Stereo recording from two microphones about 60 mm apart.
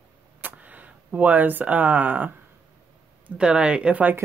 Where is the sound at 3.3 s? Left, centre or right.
Centre.